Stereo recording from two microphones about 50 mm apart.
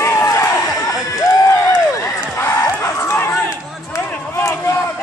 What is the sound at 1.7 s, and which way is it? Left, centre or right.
Run, left.